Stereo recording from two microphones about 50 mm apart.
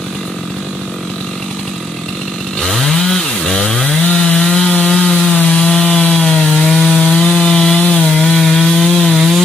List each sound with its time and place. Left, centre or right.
2.6 s chainsaw: centre
4.6 s wood: centre
7.1 s wood: centre
8.3 s wood: centre